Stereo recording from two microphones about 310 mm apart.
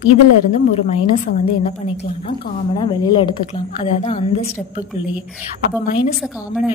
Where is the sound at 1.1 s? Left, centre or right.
Centre.